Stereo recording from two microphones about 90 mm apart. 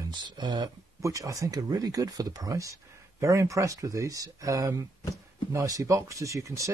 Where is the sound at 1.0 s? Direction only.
35° right (ahead or behind).